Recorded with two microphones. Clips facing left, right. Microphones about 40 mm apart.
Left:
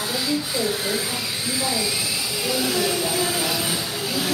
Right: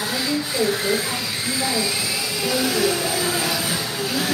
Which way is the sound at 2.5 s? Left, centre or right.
Centre.